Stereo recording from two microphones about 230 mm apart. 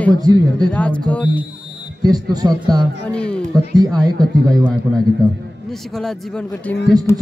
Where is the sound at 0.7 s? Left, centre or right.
Centre.